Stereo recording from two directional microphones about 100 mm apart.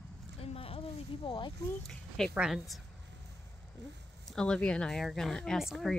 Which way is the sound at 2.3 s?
5° right (ahead or behind).